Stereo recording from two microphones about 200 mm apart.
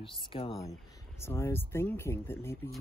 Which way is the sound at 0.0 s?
25° left (ahead or behind).